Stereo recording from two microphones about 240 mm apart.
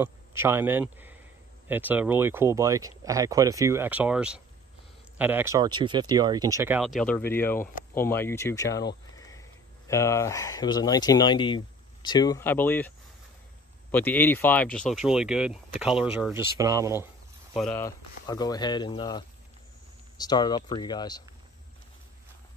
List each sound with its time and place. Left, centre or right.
0.0 s speech: centre
9.1 s cricket: centre
9.8 s speech: centre
13.9 s speech: centre
17.6 s speech: centre